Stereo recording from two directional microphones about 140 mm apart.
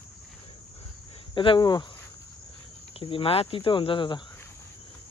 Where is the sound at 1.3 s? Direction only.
35° left (ahead or behind).